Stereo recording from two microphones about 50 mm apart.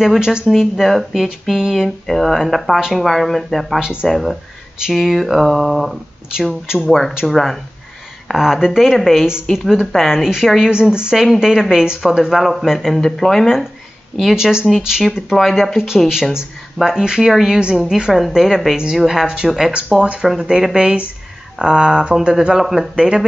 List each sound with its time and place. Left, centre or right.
0.0 s speech: centre
0.5 s speech: centre
3.8 s speech: centre
4.1 s speech: centre
14.3 s speech: centre
16.1 s speech: centre
22.1 s speech: centre